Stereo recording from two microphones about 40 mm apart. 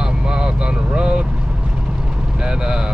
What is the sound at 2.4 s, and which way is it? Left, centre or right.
Speech, centre.